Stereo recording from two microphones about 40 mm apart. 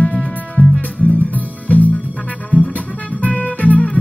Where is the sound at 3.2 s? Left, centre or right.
Left.